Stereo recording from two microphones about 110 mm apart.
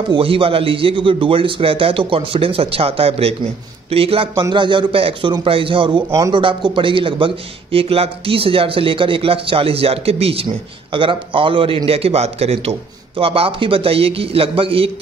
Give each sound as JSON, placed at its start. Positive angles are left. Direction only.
{"t": 0.1, "sound": "a man's voice", "side_deg": -55}
{"t": 4.4, "sound": "a man's voice", "side_deg": -45}
{"t": 10.9, "sound": "a man's voice", "side_deg": -50}
{"t": 13.2, "sound": "a man's voice", "side_deg": -55}